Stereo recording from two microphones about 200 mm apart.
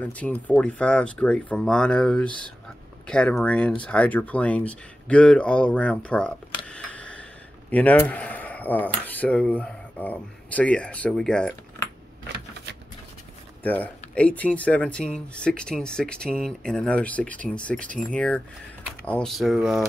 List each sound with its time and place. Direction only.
0.0 s speech: 5° left (ahead or behind)
13.6 s speech: 10° left (ahead or behind)